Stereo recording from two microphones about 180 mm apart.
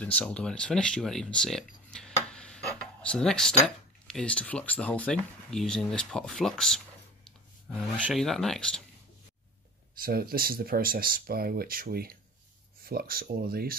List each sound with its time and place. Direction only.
0.0 s speech: 5° left (ahead or behind)
8.1 s speech: centre (ahead or behind)
9.9 s speech: 55° right (ahead or behind)